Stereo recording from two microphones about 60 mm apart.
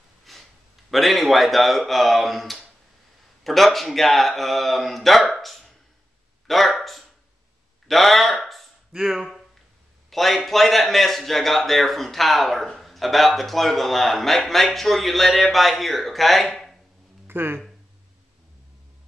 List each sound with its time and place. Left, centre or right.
0.2 s a man's voice: centre
5.3 s a sound: centre
8.9 s a man's voice: centre
17.3 s speech: right